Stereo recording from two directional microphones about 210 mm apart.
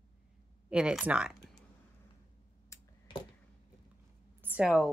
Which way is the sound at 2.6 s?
20° left (ahead or behind).